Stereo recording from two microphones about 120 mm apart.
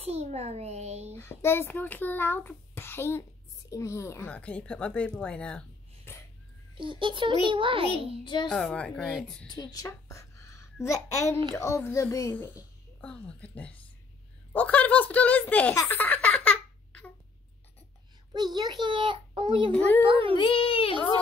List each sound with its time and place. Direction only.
0.0 s a child's voice: 60° right (ahead or behind)
1.1 s a child's voice: 20° left (ahead or behind)
4.3 s speech: 10° left (ahead or behind)
6.1 s a sound: 20° left (ahead or behind)
6.8 s a child's voice: 45° right (ahead or behind)
8.2 s a child's voice: 40° left (ahead or behind)
8.5 s speech: 5° left (ahead or behind)
9.5 s a child's voice: 35° left (ahead or behind); by 15.7 s 15° left (ahead or behind)
15.7 s baby laughter: 15° left (ahead or behind)
18.3 s a child's voice: 35° right (ahead or behind)
19.7 s speech: 15° left (ahead or behind)
20.0 s a child's voice: 45° right (ahead or behind)
20.3 s a child's voice: 45° left (ahead or behind)